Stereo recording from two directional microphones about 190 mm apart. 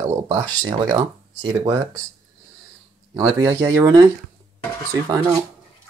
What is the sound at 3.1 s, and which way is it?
Speech, 15° right (ahead or behind).